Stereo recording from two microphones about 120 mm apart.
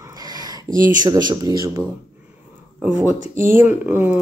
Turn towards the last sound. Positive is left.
turn(degrees=-15)  # may be behind; listen again after turning